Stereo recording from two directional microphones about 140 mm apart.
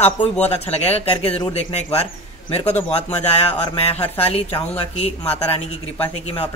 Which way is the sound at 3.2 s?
45° left (ahead or behind).